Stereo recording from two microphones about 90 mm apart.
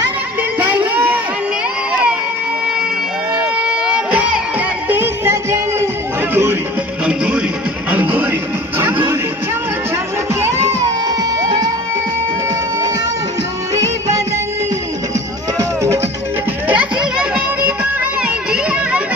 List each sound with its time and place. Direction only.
0.4 s a sound: 20° right (ahead or behind)
3.6 s music: 10° right (ahead or behind); by 5.9 s 30° right (ahead or behind)
7.1 s music: 10° right (ahead or behind)
11.1 s music: 45° right (ahead or behind)
16.6 s music: 15° right (ahead or behind)
18.2 s a sound: 15° right (ahead or behind)